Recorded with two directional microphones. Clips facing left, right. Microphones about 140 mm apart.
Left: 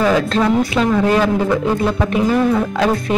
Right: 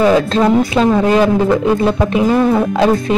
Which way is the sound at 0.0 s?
25° right (ahead or behind).